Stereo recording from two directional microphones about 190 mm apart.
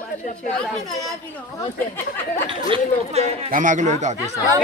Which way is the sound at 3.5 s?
45° right (ahead or behind).